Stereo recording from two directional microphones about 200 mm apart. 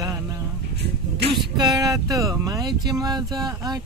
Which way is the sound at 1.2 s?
55° right (ahead or behind).